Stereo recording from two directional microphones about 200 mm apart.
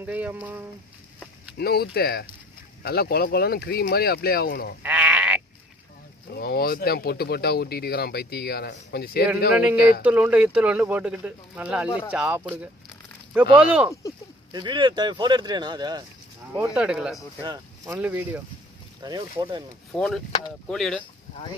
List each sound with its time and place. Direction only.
0.0 s speech: 5° right (ahead or behind)
1.6 s speech: 50° left (ahead or behind)
4.8 s sheep: 5° right (ahead or behind)
6.3 s speech: 50° left (ahead or behind)
10.0 s speech: 5° right (ahead or behind)
14.5 s speech: 25° right (ahead or behind)
16.5 s speech: 5° right (ahead or behind)
17.4 s speech: 15° right (ahead or behind)
19.0 s speech: 25° right (ahead or behind)
19.9 s speech: 5° left (ahead or behind)